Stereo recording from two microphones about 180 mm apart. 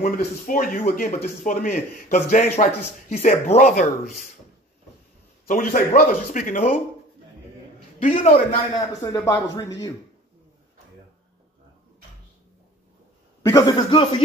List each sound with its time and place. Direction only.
0.5 s a man's voice: 50° left (ahead or behind)
5.5 s a man's voice: 50° left (ahead or behind)
8.0 s a man's voice: 45° left (ahead or behind); by 9.9 s 20° left (ahead or behind)
13.4 s a man's voice: 20° left (ahead or behind)